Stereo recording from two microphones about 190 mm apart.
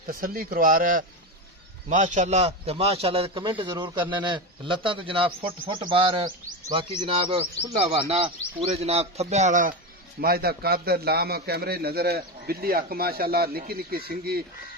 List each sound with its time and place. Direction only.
0.0 s a man's voice: 50° right (ahead or behind)
10.2 s a man's voice: 55° right (ahead or behind)